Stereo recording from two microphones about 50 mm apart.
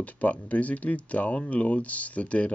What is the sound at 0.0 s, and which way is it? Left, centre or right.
Speech, left.